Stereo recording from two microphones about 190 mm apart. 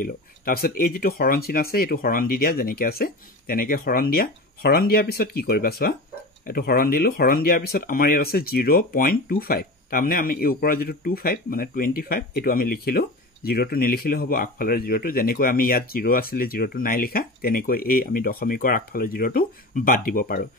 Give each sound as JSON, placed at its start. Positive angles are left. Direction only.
{"t": 0.0, "sound": "speech", "side_deg": 50}